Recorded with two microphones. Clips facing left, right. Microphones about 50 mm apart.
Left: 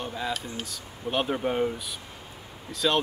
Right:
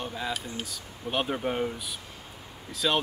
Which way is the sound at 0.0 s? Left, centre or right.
Centre.